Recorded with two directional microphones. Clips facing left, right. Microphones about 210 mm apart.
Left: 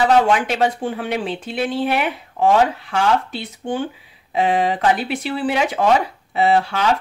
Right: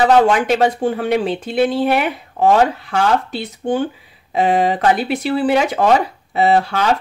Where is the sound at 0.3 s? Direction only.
45° right (ahead or behind).